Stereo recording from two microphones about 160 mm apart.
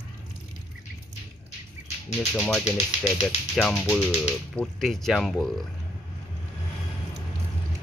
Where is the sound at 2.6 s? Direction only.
45° left (ahead or behind).